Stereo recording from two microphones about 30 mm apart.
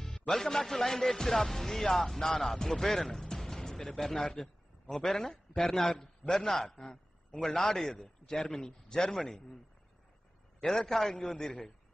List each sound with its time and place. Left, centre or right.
0.3 s speech: centre
6.8 s a sound: left
7.4 s a man's voice: centre
9.1 s speech: centre
10.6 s a man's voice: centre